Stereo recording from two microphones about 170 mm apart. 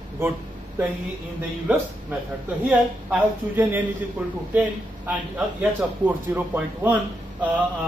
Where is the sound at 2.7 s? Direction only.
10° right (ahead or behind).